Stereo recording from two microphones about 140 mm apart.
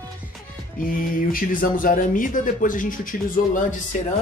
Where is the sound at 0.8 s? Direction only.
90° left; by 3.6 s 70° left (ahead or behind).